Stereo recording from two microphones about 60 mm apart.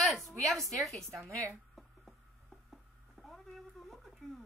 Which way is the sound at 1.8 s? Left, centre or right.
Centre.